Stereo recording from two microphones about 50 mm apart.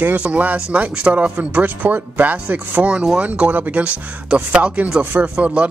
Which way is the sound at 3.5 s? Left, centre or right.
Right.